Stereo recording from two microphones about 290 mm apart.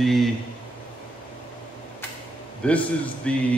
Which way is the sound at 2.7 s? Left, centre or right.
Centre.